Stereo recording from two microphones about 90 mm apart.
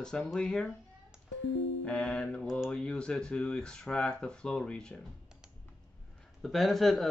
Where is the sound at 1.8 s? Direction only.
10° left (ahead or behind).